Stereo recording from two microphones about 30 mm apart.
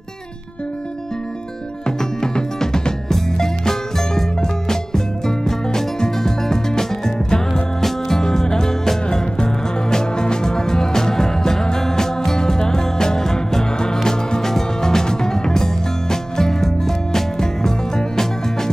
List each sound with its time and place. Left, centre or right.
1.9 s music: left